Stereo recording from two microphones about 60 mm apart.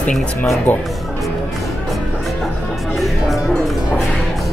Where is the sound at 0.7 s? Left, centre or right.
Left.